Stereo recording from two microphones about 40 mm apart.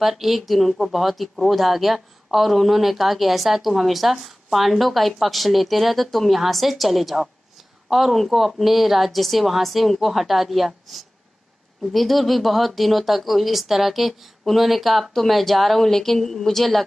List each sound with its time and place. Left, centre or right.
0.0 s a woman's voice: centre